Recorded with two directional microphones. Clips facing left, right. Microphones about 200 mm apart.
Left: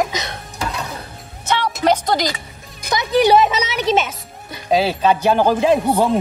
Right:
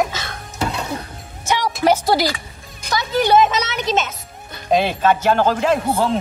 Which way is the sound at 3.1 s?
10° left (ahead or behind).